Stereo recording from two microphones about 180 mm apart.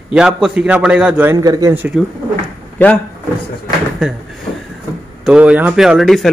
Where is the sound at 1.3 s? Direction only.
20° right (ahead or behind).